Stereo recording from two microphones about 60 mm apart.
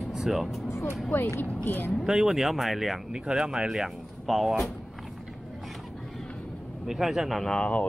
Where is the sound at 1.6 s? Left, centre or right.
Left.